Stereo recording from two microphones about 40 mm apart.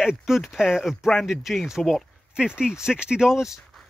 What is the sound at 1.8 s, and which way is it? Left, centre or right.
Speech, centre.